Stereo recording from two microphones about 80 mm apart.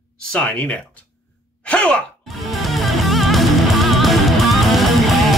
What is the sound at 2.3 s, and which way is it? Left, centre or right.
Music, centre.